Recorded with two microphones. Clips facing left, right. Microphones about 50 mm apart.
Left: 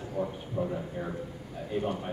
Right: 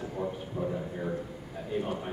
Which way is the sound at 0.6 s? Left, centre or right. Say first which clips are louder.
Left 2 dB; centre.